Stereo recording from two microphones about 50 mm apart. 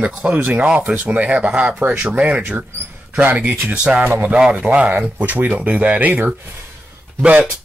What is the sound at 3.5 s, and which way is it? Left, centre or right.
Speech, right.